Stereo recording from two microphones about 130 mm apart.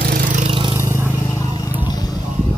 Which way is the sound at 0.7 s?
20° right (ahead or behind).